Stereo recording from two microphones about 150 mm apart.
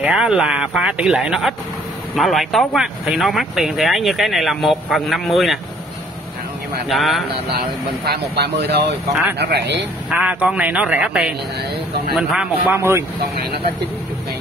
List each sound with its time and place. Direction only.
0.0 s speech: 5° right (ahead or behind)
6.9 s speech: centre (ahead or behind)
7.5 s speech: 90° right
10.0 s a man's voice: 5° right (ahead or behind)